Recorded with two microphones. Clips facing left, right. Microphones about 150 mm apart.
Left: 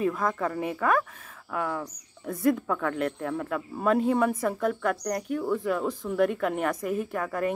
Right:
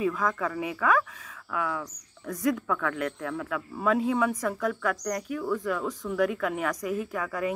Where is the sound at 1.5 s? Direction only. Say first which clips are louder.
Left 1 dB; 40° left (ahead or behind).